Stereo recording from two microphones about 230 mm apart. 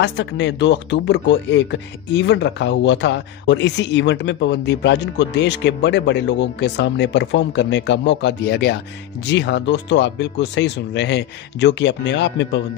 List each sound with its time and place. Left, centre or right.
0.0 s speech: left